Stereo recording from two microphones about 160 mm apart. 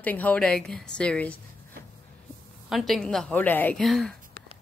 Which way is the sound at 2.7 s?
Centre (ahead or behind).